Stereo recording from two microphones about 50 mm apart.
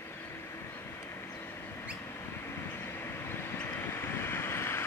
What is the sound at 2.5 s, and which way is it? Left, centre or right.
Vehicle, left.